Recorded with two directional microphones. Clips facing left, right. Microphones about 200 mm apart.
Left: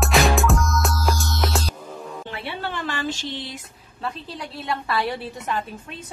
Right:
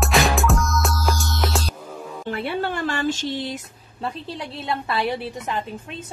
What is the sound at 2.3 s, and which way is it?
Music, 50° right (ahead or behind).